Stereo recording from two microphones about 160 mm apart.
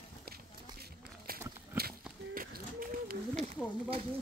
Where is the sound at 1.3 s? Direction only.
70° right (ahead or behind).